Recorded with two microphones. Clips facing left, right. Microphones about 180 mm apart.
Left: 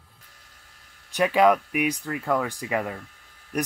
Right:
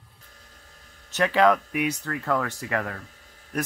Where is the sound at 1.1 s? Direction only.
10° left (ahead or behind).